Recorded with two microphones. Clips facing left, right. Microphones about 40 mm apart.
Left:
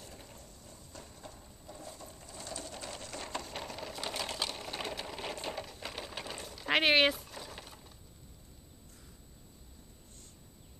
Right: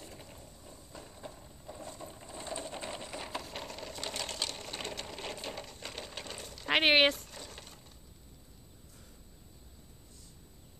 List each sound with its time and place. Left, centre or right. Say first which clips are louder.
0.0 s a sound: right 1 dB; centre
2.0 s sewing machine: right 3 dB; right; by 6.7 s centre
6.7 s speech: right 1 dB; centre
7.1 s mechanisms: right 1 dB; centre